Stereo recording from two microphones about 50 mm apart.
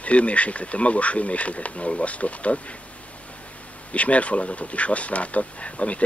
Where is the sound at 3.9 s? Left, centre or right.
Left.